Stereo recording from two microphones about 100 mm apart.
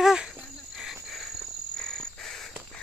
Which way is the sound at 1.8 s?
5° left (ahead or behind).